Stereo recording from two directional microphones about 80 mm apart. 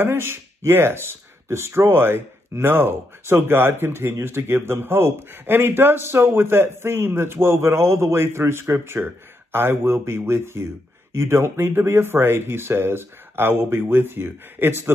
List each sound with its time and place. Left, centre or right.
0.0 s speech: right